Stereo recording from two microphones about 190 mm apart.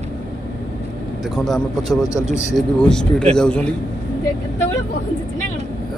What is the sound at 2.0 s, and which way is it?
Speech, 15° left (ahead or behind).